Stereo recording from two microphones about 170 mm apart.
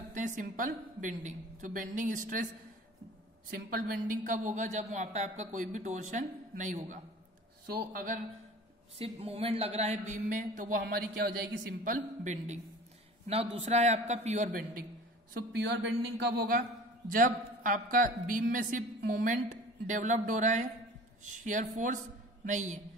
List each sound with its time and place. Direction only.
0.1 s a woman's voice: 50° right (ahead or behind)
3.4 s a woman's voice: 60° right (ahead or behind)
8.9 s speech: 35° right (ahead or behind); by 10.8 s 50° right (ahead or behind)
10.8 s a woman's voice: 70° right (ahead or behind); by 12.5 s 45° right (ahead or behind)
13.3 s speech: 35° right (ahead or behind)
15.5 s a man's voice: 80° right; by 22.8 s 45° right (ahead or behind)